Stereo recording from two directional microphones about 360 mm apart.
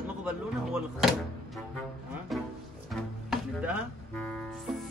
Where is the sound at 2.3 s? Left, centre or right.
Centre.